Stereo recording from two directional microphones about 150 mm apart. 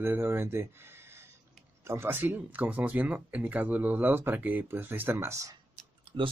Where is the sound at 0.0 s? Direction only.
15° right (ahead or behind).